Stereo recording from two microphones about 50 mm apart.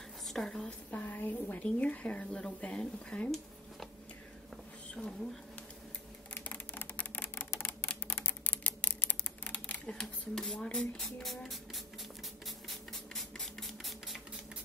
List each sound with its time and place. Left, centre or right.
0.3 s a woman's voice: centre
1.0 s a woman's voice: left
1.6 s speech: left
6.3 s a sound: left
7.3 s typewriter: left
8.1 s typing: left
9.9 s speech: centre
11.2 s music: centre
12.4 s printer: centre